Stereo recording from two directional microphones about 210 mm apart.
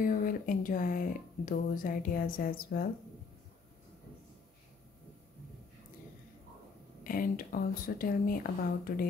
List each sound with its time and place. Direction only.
0.0 s speech: 40° left (ahead or behind)
7.0 s speech: 40° left (ahead or behind)